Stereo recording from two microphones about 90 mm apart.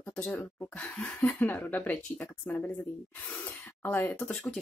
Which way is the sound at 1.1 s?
20° left (ahead or behind).